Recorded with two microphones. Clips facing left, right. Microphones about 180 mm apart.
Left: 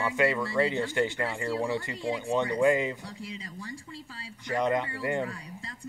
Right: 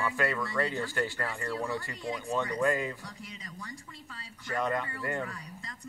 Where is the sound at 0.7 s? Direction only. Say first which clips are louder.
Left 5 dB; 20° left (ahead or behind).